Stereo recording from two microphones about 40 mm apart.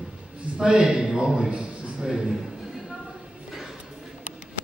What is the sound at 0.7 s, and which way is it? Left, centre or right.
A man's voice, right.